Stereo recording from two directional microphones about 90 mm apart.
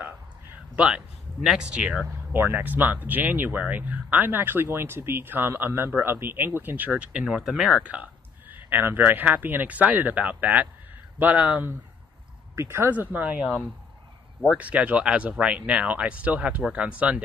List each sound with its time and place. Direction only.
0.7 s speech: 10° right (ahead or behind)
2.3 s speech: 20° right (ahead or behind)
12.5 s speech: 30° right (ahead or behind)
12.9 s speech: 20° right (ahead or behind)
14.6 s speech: 15° right (ahead or behind)